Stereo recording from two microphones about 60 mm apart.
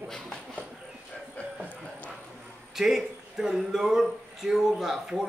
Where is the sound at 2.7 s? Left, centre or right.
Centre.